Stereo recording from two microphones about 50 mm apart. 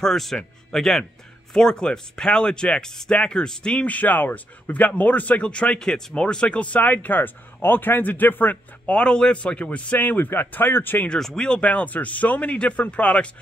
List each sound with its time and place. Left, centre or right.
0.0 s speech: centre
3.8 s speech: left
8.8 s speech: centre
10.0 s speech: left
11.1 s speech: centre